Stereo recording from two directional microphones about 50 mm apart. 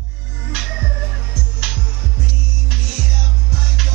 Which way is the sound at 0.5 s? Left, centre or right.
Centre.